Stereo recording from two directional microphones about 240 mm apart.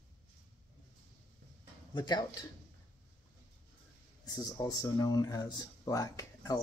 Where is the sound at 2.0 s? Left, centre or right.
Centre.